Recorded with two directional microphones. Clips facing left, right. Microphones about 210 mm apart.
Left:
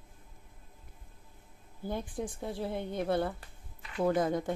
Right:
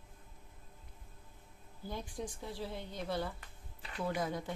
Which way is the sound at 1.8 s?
55° left (ahead or behind).